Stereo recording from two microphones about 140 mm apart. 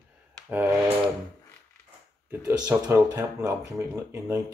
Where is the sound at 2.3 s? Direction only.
15° right (ahead or behind).